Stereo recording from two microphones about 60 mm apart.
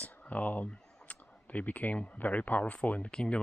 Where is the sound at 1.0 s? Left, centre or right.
Left.